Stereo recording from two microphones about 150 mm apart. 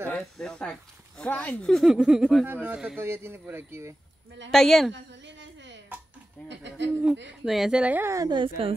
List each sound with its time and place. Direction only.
0.1 s speech: 5° left (ahead or behind)
3.0 s speech: 15° right (ahead or behind)
4.5 s speech: centre (ahead or behind)
7.0 s speech: 5° right (ahead or behind)
8.3 s speech: 35° right (ahead or behind)